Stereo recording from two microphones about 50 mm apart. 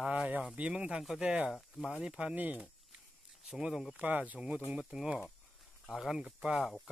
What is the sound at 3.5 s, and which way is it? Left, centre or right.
Speech, centre.